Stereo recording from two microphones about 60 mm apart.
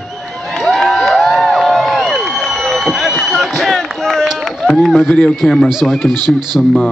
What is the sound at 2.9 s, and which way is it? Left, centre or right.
Run, centre.